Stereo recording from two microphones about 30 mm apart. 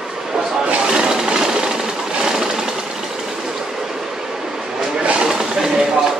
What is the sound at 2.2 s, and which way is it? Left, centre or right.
Sewing machine, right.